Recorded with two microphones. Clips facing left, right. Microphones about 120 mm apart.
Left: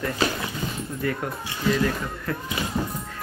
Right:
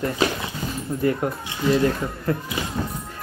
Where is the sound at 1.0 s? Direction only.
30° right (ahead or behind).